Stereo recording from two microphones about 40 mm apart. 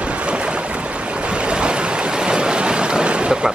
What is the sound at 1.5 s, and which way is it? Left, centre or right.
Waves, right.